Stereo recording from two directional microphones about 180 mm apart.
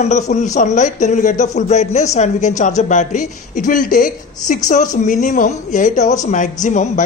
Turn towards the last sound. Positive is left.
turn(degrees=45)  # may be behind; listen again after turning